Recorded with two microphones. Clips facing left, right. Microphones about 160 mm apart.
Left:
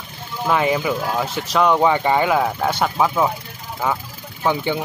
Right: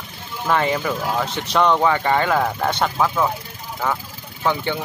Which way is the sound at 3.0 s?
15° left (ahead or behind).